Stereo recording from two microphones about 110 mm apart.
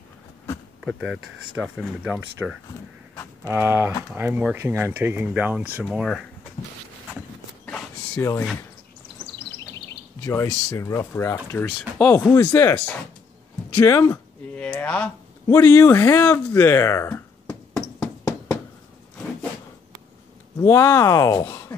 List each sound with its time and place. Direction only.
0.7 s speech: centre (ahead or behind)
8.2 s speech: 25° left (ahead or behind)
10.2 s speech: 30° left (ahead or behind)
14.5 s a sound: 10° left (ahead or behind)
15.4 s speech: 25° left (ahead or behind)
17.9 s a sound: 10° left (ahead or behind)
20.6 s speech: 25° left (ahead or behind)